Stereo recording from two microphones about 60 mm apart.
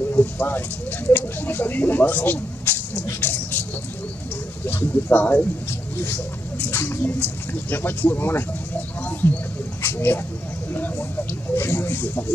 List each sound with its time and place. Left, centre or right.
0.1 s speech: left
3.2 s vehicle: left
4.6 s speech: left
7.0 s speech: left